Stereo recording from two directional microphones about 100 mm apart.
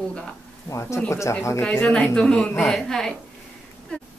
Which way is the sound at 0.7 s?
30° left (ahead or behind).